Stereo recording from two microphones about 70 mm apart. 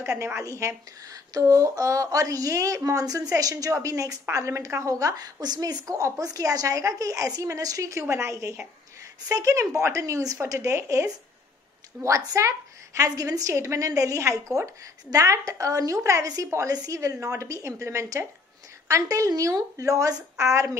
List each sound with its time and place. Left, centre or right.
0.2 s a woman's voice: right
5.9 s a woman's voice: right